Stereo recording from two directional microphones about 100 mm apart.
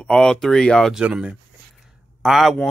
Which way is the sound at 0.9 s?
10° right (ahead or behind).